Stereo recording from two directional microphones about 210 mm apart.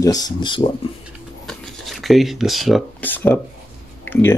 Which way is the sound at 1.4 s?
Centre (ahead or behind).